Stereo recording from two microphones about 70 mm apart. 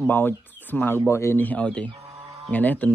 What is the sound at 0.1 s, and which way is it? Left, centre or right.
Speech, left.